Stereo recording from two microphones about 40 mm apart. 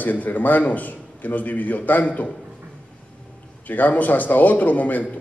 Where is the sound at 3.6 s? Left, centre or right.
Left.